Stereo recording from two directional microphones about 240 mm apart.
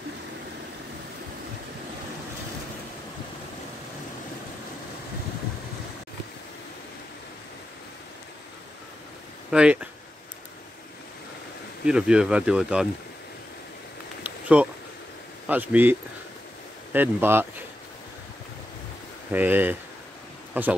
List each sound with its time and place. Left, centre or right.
9.5 s speech: centre
11.8 s speech: centre
14.2 s a sound: centre
15.4 s speech: centre
19.3 s speech: centre